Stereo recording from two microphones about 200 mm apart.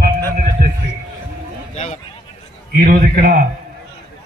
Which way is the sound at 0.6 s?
50° right (ahead or behind).